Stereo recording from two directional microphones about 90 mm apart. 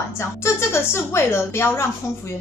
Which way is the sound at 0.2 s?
30° left (ahead or behind).